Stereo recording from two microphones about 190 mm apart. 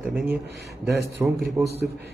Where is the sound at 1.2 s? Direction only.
10° right (ahead or behind).